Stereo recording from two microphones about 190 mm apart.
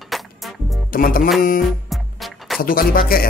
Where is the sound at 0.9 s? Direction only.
50° left (ahead or behind).